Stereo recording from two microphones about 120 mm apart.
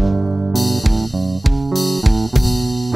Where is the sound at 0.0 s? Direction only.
Centre (ahead or behind).